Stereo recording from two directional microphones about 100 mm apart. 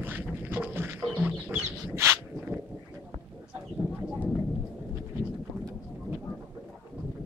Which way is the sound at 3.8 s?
15° right (ahead or behind).